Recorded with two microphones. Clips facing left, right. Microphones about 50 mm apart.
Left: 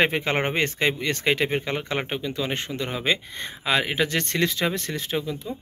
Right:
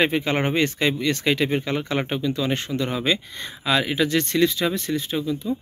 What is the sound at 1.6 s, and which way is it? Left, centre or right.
Speech, left.